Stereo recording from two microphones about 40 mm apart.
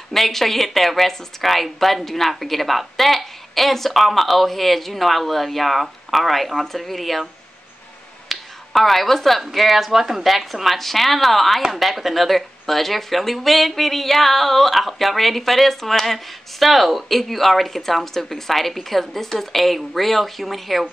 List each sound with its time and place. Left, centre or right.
0.1 s speech: centre
8.3 s finger snapping: centre
9.5 s speech: centre